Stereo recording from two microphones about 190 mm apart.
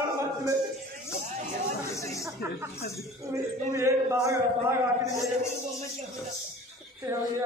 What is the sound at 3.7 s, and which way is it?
Speech, 15° right (ahead or behind).